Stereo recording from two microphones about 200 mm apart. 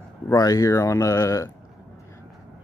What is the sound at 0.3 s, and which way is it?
Speech, 15° left (ahead or behind).